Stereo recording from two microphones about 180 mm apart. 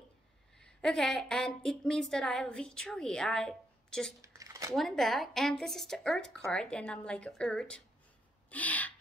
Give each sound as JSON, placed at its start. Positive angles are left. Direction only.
{"t": 0.6, "sound": "a woman's voice", "side_deg": 5}
{"t": 4.2, "sound": "a sound", "side_deg": -15}
{"t": 4.7, "sound": "a woman's voice", "side_deg": 0}
{"t": 8.5, "sound": "gasp", "side_deg": 10}